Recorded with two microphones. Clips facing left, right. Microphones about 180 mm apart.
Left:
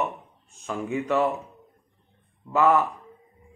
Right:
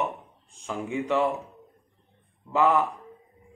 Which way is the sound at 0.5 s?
15° right (ahead or behind).